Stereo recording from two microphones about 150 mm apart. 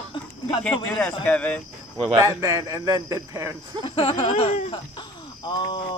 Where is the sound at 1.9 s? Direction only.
30° right (ahead or behind).